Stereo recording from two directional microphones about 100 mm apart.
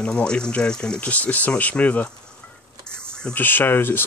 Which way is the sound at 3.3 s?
20° left (ahead or behind).